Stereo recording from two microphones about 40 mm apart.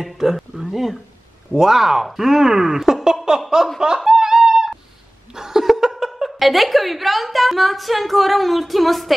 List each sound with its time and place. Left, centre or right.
0.0 s speech: centre
3.3 s chuckle: centre
3.8 s speech: centre
4.1 s a sound: centre
5.3 s speech: centre